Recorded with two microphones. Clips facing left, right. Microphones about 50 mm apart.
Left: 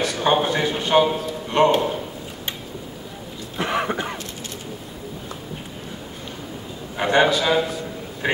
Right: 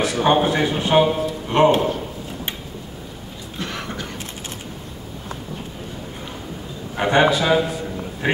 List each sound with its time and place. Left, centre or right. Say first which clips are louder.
0.0 s a man's voice: right 2 dB; centre
3.5 s cough: left 6 dB; left
7.0 s a man's voice: right 1 dB; centre